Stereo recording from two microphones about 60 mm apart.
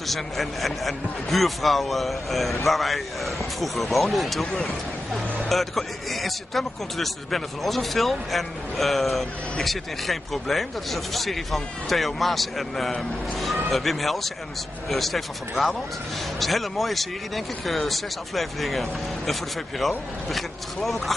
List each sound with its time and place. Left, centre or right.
0.0 s speech: centre